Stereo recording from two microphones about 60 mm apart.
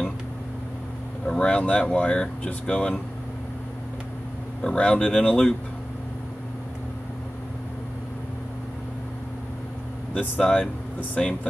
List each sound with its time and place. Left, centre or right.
1.2 s speech: centre
4.6 s speech: centre
10.1 s speech: centre